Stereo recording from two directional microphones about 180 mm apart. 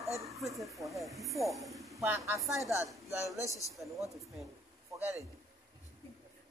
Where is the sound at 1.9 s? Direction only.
10° right (ahead or behind).